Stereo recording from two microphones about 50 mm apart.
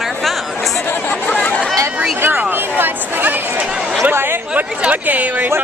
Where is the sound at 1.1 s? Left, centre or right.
Left.